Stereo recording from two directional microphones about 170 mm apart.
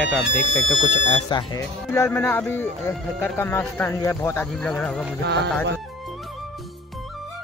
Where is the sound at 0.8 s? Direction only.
35° left (ahead or behind).